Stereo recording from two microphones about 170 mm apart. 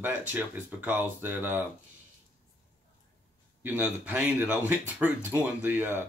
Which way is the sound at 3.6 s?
10° right (ahead or behind).